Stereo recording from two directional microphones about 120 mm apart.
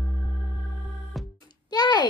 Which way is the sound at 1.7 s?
35° left (ahead or behind).